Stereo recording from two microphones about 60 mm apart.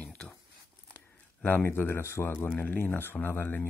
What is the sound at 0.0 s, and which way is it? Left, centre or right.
Crumpling, left.